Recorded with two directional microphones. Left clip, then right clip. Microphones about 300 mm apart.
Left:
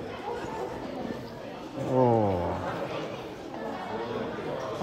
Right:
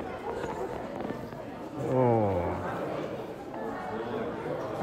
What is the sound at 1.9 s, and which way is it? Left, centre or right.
Speech, centre.